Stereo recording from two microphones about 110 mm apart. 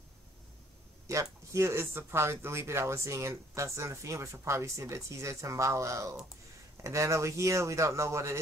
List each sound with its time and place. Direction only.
1.1 s speech: 30° right (ahead or behind)